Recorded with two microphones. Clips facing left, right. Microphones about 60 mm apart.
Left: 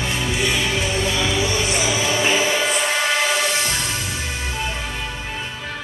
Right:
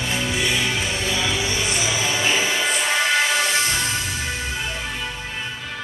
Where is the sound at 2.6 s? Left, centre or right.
Centre.